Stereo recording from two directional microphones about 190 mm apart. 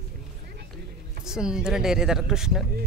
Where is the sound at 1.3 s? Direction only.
5° right (ahead or behind).